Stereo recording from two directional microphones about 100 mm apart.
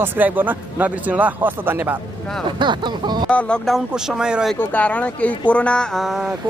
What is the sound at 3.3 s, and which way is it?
Speech, 10° left (ahead or behind).